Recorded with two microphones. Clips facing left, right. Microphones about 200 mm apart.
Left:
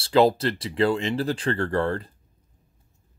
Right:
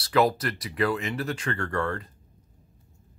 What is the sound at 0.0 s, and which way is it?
Speech, 25° left (ahead or behind).